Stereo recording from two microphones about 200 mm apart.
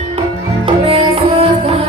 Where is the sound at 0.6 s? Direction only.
30° right (ahead or behind).